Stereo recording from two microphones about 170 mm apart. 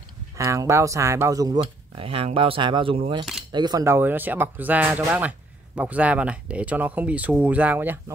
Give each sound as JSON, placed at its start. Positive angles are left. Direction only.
{"t": 0.4, "sound": "speech", "side_deg": -15}
{"t": 1.6, "sound": "speech", "side_deg": -35}